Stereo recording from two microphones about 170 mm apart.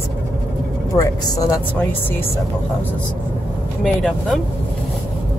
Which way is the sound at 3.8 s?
5° left (ahead or behind).